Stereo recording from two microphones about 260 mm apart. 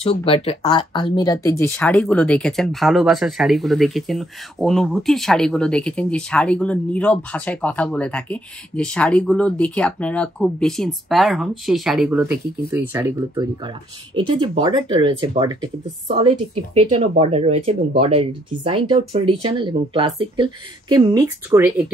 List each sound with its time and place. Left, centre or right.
0.0 s speech: left; by 21.9 s centre